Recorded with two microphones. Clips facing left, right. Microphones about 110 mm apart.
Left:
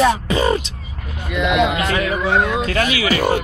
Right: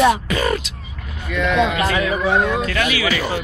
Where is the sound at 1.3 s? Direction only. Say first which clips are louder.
Left 1 dB; 15° left (ahead or behind).